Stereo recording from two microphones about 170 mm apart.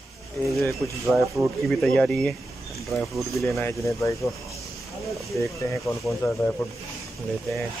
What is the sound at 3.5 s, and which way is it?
Speech, 15° left (ahead or behind).